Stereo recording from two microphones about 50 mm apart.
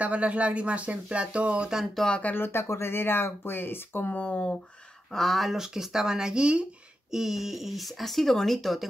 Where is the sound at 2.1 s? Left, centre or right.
Left.